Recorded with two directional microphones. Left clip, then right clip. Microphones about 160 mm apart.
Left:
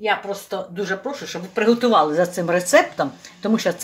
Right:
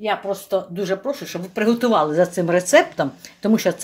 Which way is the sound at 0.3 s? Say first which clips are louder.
Right 5 dB; 70° right (ahead or behind).